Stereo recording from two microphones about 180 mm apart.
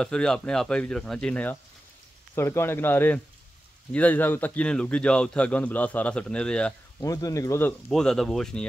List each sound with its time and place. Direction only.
0.0 s a man's voice: 5° left (ahead or behind)
7.0 s a man's voice: 20° left (ahead or behind)
7.9 s speech: centre (ahead or behind)